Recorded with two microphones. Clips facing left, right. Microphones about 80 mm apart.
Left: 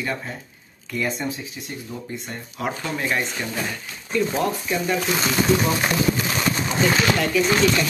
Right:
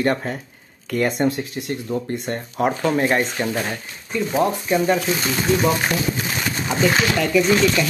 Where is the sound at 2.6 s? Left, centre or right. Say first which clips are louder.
Right 7 dB; right.